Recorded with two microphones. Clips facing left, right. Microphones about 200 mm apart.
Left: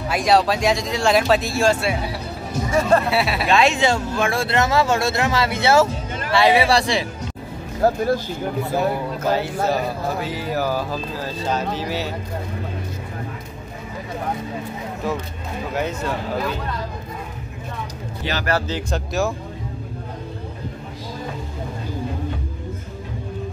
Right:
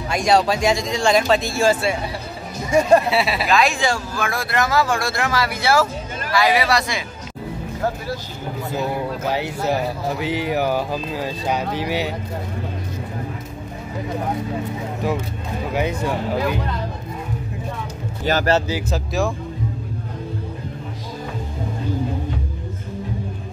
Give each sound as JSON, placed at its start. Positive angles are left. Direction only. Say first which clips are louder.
{"t": 0.1, "sound": "speech", "louder": "even", "side_deg": 0}
{"t": 2.7, "sound": "speech", "louder": "right 3 dB", "side_deg": -15}
{"t": 3.1, "sound": "speech", "louder": "right 1 dB", "side_deg": 0}
{"t": 3.4, "sound": "speech", "louder": "left 5 dB", "side_deg": 25}
{"t": 7.8, "sound": "speech", "louder": "left 7 dB", "side_deg": 50}
{"t": 10.2, "sound": "speech", "louder": "right 6 dB", "side_deg": -20}
{"t": 15.7, "sound": "speech", "louder": "right 2 dB", "side_deg": -10}
{"t": 18.2, "sound": "speech", "louder": "right 6 dB", "side_deg": -45}
{"t": 18.7, "sound": "speech", "louder": "right 1 dB", "side_deg": -5}